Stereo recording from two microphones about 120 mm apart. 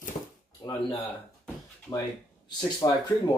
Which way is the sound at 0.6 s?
40° left (ahead or behind).